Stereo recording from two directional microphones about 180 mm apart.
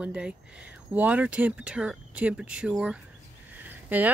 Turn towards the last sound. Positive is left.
turn(degrees=-10)  # may be behind; listen again after turning